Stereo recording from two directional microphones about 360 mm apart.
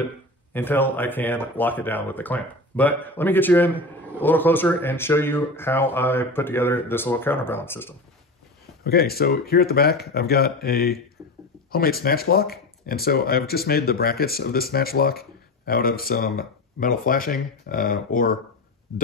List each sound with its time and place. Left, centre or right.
0.5 s speech: centre
8.8 s speech: left
11.2 s a sound: centre
11.7 s speech: left